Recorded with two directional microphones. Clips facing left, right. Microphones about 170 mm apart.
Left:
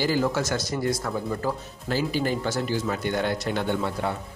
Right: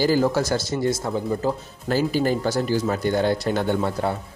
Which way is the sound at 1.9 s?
45° right (ahead or behind).